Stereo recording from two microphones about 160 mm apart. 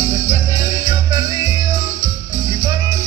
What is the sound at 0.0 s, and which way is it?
Music, 20° right (ahead or behind).